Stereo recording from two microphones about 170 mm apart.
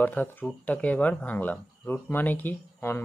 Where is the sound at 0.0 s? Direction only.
10° left (ahead or behind).